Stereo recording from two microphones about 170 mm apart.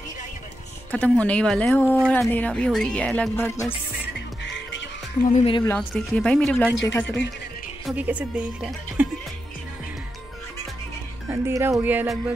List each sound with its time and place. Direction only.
0.9 s speech: 10° left (ahead or behind)
5.3 s speech: 35° left (ahead or behind)
5.8 s speech: 5° left (ahead or behind)
7.8 s a woman's voice: 10° right (ahead or behind)
11.2 s a woman's voice: 15° right (ahead or behind)